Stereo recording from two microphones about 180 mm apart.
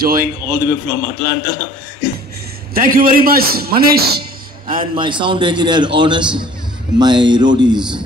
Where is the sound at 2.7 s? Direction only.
50° right (ahead or behind).